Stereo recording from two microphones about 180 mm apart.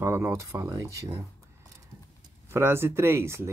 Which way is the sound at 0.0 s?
15° right (ahead or behind).